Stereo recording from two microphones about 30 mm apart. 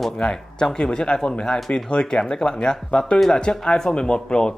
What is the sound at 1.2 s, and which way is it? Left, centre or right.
Speech, left.